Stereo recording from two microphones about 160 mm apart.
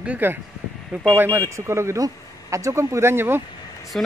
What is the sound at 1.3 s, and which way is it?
Speech, 15° right (ahead or behind).